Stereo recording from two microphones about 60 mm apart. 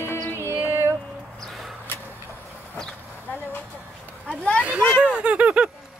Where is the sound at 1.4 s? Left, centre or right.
Centre.